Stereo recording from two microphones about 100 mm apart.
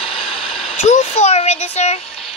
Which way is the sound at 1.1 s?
90° left.